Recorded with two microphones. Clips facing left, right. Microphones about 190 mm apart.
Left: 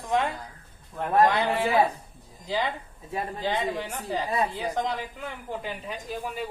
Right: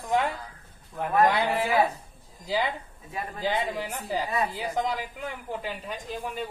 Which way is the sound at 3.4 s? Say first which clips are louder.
Right 1 dB; 10° right (ahead or behind).